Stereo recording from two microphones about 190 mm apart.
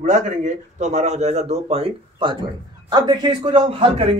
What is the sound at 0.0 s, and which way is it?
Speech, 40° right (ahead or behind).